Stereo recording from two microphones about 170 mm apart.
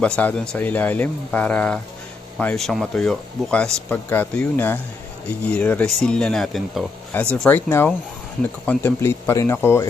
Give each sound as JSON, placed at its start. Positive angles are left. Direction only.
{"t": 0.0, "sound": "speech", "side_deg": 5}
{"t": 7.3, "sound": "speech", "side_deg": 10}